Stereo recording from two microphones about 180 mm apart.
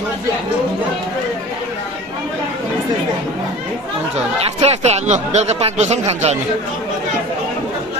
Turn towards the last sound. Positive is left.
turn(degrees=-35)  # may be behind; listen again after turning